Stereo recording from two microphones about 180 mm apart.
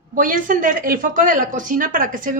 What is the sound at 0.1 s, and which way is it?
Speech, 50° right (ahead or behind).